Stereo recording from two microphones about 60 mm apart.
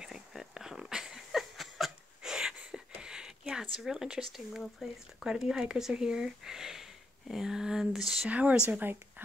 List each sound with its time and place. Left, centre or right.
0.0 s a sound: centre
2.3 s speech: centre
8.3 s speech: right